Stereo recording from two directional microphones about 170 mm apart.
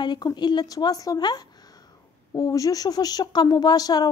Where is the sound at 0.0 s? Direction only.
25° left (ahead or behind).